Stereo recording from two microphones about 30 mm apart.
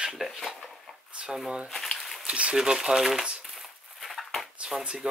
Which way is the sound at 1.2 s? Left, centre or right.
Right.